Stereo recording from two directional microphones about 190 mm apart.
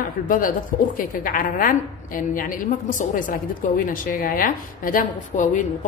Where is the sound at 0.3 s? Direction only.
45° left (ahead or behind).